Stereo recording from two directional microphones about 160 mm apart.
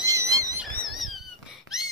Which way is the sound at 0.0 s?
20° right (ahead or behind).